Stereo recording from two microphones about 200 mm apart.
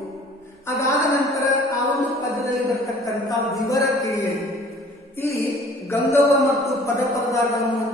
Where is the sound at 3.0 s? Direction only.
15° left (ahead or behind).